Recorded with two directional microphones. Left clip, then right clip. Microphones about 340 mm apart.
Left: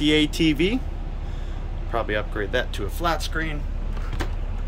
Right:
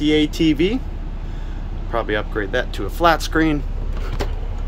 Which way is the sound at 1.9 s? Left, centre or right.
Centre.